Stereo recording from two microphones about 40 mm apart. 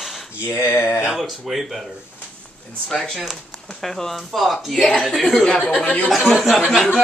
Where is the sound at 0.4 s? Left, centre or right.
Left.